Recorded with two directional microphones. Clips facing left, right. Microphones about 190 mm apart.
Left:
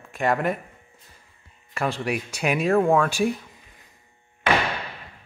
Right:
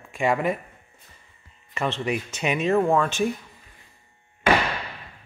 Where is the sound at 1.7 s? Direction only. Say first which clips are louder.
Even; 10° left (ahead or behind).